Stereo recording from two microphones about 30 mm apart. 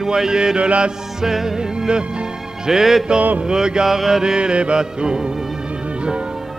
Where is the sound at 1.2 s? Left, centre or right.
Centre.